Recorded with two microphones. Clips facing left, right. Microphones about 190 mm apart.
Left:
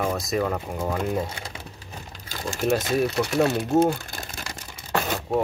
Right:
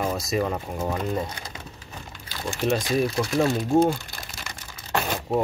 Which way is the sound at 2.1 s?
40° left (ahead or behind).